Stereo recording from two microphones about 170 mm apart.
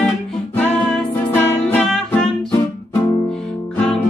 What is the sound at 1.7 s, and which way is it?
Music, 5° left (ahead or behind).